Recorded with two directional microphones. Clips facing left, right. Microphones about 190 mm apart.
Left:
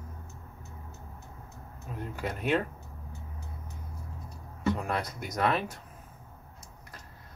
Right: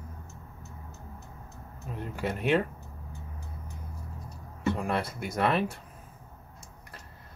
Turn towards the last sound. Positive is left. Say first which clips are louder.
# right 2 dB
turn(degrees=-5)  # may be behind; listen again after turning